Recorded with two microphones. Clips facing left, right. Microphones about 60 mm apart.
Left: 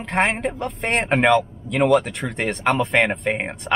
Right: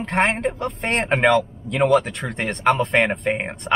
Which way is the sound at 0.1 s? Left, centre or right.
Centre.